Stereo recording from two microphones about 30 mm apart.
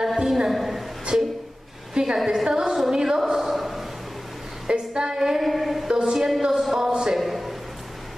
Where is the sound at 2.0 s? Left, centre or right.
Right.